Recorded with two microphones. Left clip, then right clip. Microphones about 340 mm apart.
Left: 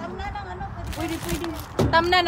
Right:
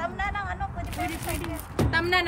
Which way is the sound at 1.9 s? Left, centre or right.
Centre.